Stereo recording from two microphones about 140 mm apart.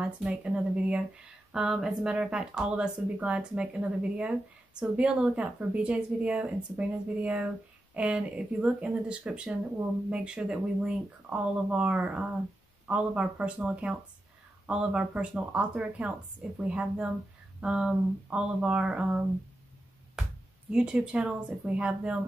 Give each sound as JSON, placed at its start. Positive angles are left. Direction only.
{"t": 0.0, "sound": "speech", "side_deg": -10}
{"t": 20.7, "sound": "speech", "side_deg": -5}